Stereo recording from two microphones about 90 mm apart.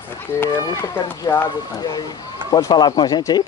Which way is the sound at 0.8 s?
25° left (ahead or behind).